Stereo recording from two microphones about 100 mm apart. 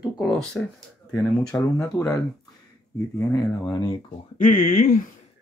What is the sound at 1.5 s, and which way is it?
Speech, 30° left (ahead or behind).